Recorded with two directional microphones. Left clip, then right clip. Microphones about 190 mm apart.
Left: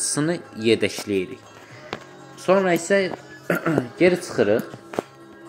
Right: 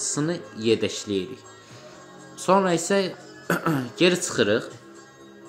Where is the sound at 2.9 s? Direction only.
5° right (ahead or behind).